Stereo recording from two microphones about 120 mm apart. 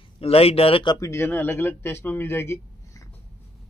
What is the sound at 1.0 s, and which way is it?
Speech, 20° left (ahead or behind).